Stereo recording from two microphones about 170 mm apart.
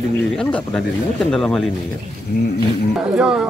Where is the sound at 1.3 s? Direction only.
5° left (ahead or behind).